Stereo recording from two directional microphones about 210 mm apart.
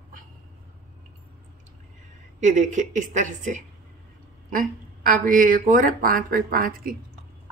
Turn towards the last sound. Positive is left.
turn(degrees=-45)  # may be behind; listen again after turning